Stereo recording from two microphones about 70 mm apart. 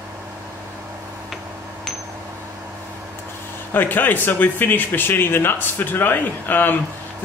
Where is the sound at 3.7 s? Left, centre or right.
Left.